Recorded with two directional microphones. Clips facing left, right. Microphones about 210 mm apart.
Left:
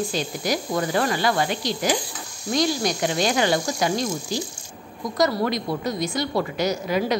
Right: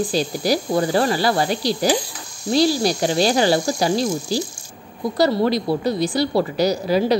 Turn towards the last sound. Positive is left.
turn(degrees=-35)  # may be behind; listen again after turning